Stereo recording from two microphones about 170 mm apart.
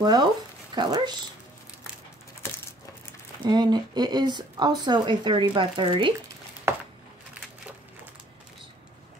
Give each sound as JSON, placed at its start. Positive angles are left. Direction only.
{"t": 0.0, "sound": "speech", "side_deg": -25}
{"t": 3.4, "sound": "speech", "side_deg": -25}